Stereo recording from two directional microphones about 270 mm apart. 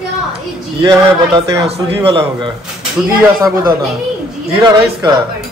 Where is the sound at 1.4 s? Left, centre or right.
Right.